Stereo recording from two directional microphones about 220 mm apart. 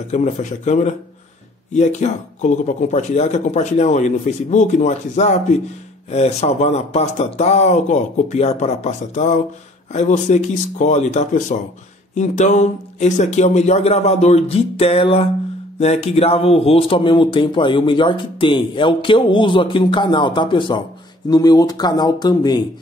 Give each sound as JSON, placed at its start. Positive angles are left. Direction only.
{"t": 0.1, "sound": "a man's voice", "side_deg": 30}